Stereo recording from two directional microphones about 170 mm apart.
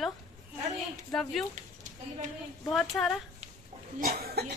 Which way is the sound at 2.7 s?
Centre (ahead or behind).